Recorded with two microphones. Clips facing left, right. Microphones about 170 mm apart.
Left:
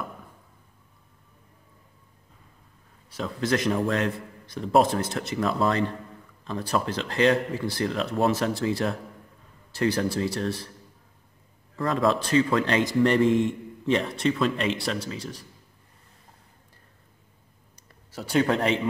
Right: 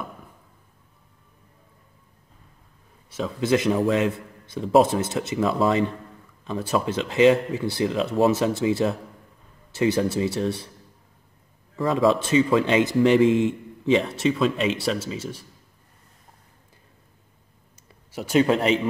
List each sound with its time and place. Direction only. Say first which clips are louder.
3.2 s a man's voice: right 4 dB; 5° right (ahead or behind)
11.7 s a man's voice: right 4 dB; centre (ahead or behind)
18.3 s a man's voice: right 3 dB; 20° right (ahead or behind)